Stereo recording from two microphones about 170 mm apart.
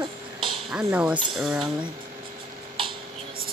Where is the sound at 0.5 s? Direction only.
5° right (ahead or behind).